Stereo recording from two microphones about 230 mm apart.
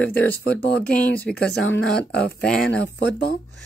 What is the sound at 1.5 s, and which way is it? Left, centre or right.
Speech, left.